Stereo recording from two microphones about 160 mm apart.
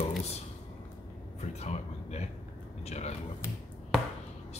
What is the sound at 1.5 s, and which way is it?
A man's voice, 45° left (ahead or behind).